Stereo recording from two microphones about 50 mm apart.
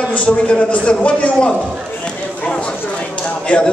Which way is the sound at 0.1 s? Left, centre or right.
Left.